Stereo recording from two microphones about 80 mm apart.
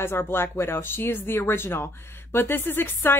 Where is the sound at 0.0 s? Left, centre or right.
Left.